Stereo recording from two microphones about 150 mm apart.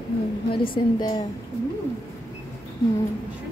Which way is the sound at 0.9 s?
30° left (ahead or behind).